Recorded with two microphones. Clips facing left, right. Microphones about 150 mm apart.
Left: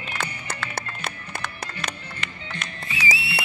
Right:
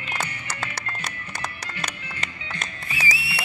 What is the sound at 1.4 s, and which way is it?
Music, 40° right (ahead or behind).